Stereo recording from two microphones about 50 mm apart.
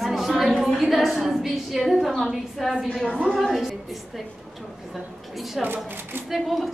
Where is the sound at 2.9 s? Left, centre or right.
Centre.